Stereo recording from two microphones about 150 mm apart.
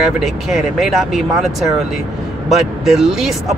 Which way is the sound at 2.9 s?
Centre (ahead or behind).